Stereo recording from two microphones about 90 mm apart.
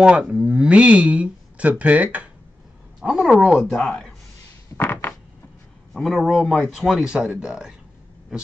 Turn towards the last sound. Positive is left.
turn(degrees=-10)  # may be behind; listen again after turning